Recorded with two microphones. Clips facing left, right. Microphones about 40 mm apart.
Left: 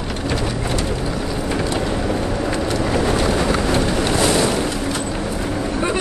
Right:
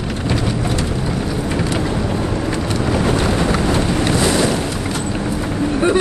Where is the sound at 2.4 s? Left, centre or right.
Centre.